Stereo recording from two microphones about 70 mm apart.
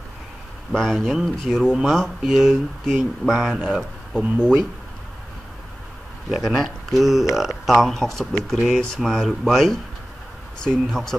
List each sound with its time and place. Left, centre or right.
0.7 s speech: centre
4.2 s speech: centre
6.3 s speech: centre
8.5 s speech: centre